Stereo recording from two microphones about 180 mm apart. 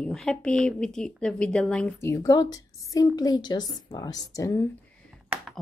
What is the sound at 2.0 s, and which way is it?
A woman's voice, 20° left (ahead or behind).